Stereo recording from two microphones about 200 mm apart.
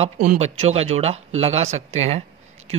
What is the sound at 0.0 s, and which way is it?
Speech, 35° right (ahead or behind).